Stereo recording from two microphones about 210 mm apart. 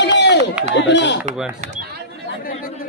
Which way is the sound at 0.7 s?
55° left (ahead or behind).